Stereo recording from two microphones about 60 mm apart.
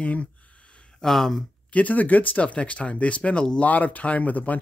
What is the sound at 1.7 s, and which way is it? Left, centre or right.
Speech, left.